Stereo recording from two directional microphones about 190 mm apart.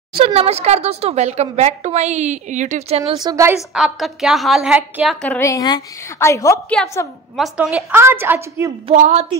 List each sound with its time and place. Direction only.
0.1 s a woman's voice: 30° right (ahead or behind)
3.1 s a woman's voice: 20° right (ahead or behind)
3.5 s a woman's voice: centre (ahead or behind)
5.2 s a woman's voice: 10° left (ahead or behind)
7.3 s a woman's voice: centre (ahead or behind)
8.8 s a woman's voice: 35° right (ahead or behind)